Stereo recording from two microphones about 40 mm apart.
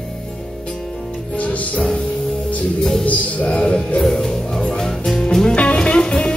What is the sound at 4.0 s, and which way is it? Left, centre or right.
Music, centre.